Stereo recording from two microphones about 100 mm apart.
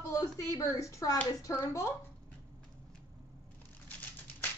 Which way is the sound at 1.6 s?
30° left (ahead or behind).